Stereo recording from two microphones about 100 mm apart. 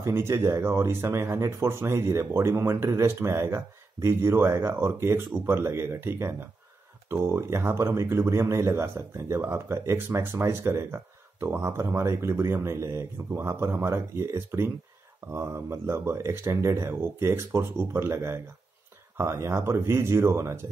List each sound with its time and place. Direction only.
0.0 s speech: 25° right (ahead or behind)